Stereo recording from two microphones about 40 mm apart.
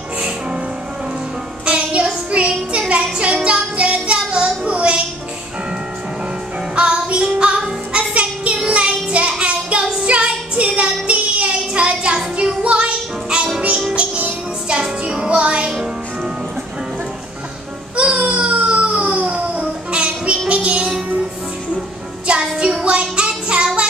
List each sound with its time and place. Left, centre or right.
1.7 s child singing: right
2.3 s music: right
6.7 s music: right
8.1 s a sound: right
8.7 s child singing: right
12.4 s music: right
17.9 s baby cry: right
21.7 s music: right
22.6 s child singing: right